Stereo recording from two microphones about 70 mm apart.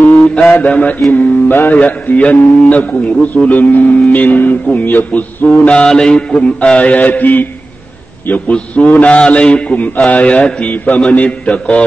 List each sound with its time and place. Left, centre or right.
0.3 s a man's voice: centre
1.1 s mantra: left
1.8 s a man's voice: left
5.7 s mantra: centre
8.3 s a man's voice: centre